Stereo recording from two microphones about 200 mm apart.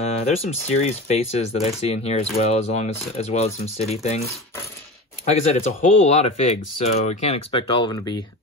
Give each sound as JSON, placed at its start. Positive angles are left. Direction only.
{"t": 0.0, "sound": "speech", "side_deg": 30}